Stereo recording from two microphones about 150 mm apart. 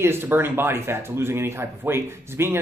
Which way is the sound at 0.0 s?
15° right (ahead or behind).